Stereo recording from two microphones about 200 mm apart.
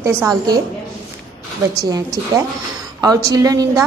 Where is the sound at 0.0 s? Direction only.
15° right (ahead or behind).